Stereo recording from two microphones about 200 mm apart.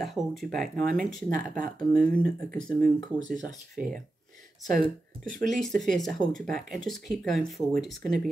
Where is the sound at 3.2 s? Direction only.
40° right (ahead or behind).